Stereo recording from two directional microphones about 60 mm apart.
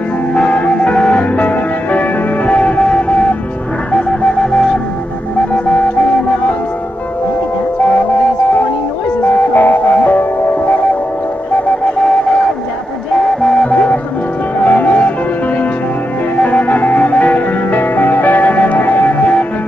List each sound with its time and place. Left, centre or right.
0.3 s music: centre
7.8 s music: centre
9.2 s music: left
12.0 s music: centre